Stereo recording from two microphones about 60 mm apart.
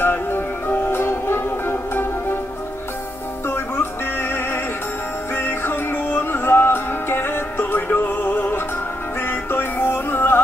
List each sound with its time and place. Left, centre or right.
0.0 s music: left
3.4 s music: left